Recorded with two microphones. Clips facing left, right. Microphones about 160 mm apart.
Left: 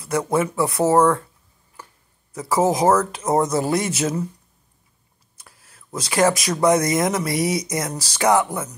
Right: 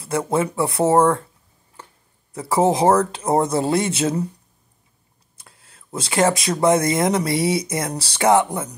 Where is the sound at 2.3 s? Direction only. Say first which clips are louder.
Right 1 dB; 30° right (ahead or behind).